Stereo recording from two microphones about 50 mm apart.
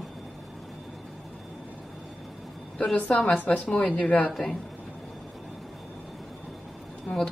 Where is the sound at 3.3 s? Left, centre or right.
Left.